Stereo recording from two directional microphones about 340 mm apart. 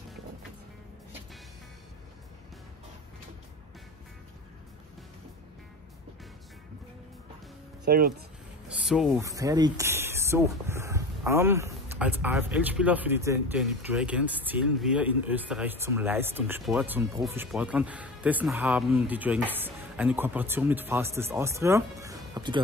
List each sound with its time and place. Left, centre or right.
7.8 s speech: right
8.6 s speech: centre